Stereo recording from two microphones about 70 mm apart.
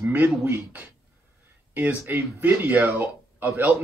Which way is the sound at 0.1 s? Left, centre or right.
Right.